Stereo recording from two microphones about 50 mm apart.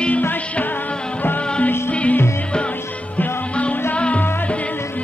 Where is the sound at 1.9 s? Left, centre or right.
Left.